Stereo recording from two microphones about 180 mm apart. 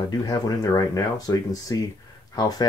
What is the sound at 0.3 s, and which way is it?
Speech, 20° left (ahead or behind).